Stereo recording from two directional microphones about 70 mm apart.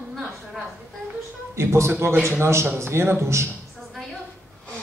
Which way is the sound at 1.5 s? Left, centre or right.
Right.